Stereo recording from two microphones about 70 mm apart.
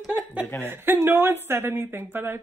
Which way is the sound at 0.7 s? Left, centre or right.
Right.